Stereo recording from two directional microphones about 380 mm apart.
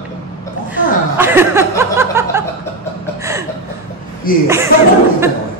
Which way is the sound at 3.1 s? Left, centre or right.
Centre.